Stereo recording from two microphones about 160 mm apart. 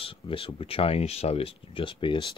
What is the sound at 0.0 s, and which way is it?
Speech, 35° left (ahead or behind).